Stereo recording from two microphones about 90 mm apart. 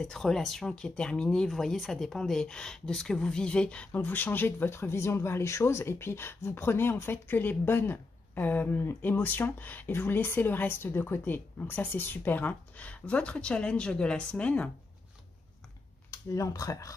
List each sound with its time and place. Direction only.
0.0 s speech: 5° left (ahead or behind)
16.1 s speech: 40° left (ahead or behind)